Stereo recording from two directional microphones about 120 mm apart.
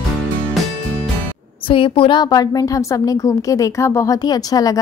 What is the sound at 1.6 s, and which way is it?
A woman's voice, 45° left (ahead or behind).